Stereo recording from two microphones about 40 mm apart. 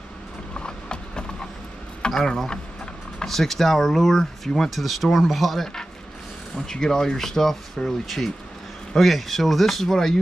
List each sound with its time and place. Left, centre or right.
0.6 s mechanisms: left
2.1 s speech: centre
4.6 s speech: centre
6.5 s speech: centre